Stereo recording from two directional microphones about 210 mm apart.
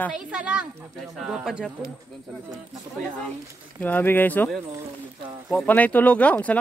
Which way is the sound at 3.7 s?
10° left (ahead or behind).